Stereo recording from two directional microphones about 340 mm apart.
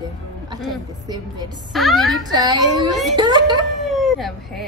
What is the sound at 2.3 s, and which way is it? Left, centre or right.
A woman's voice, centre.